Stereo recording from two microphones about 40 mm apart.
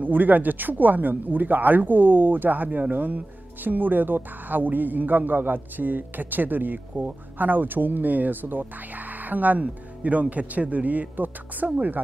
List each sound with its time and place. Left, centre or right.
0.0 s speech: right